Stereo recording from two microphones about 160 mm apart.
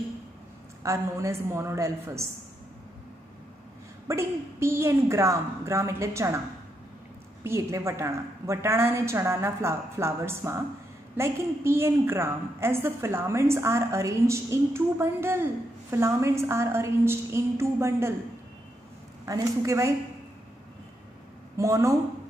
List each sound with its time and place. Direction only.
0.8 s a woman's voice: 15° right (ahead or behind)
4.1 s a woman's voice: 15° right (ahead or behind)
7.4 s a woman's voice: 20° right (ahead or behind)
19.2 s a woman's voice: 20° right (ahead or behind)
21.5 s a woman's voice: 20° right (ahead or behind)